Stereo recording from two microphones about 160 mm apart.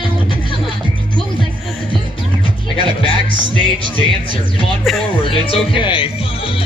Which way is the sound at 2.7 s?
30° left (ahead or behind).